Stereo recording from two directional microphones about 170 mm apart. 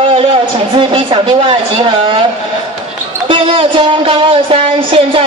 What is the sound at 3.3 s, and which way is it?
Speech, 30° right (ahead or behind).